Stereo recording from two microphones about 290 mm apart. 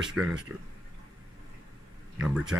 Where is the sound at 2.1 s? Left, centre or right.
Centre.